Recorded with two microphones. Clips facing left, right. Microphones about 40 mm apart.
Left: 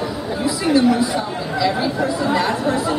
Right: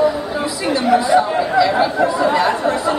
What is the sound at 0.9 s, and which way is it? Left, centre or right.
Speech, right.